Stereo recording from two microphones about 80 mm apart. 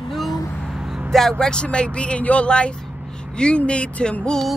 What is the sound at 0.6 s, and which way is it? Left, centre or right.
Vehicle, centre.